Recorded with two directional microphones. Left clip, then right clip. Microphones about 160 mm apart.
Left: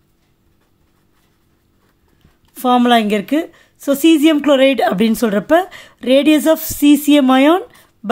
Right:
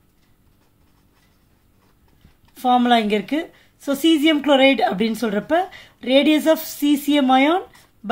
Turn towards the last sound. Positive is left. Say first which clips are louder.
# left 4 dB
turn(degrees=50)  # may be behind; listen again after turning